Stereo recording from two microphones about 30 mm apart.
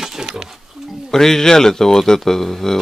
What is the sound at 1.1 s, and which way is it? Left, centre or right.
Speech, centre.